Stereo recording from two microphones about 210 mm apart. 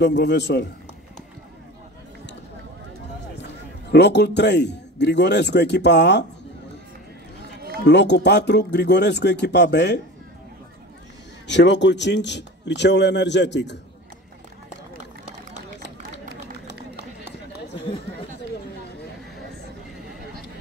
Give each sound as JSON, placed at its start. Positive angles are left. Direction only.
{"t": 0.0, "sound": "speech", "side_deg": 55}
{"t": 3.3, "sound": "a man's voice", "side_deg": 55}
{"t": 7.8, "sound": "speech", "side_deg": 55}
{"t": 11.4, "sound": "speech", "side_deg": 55}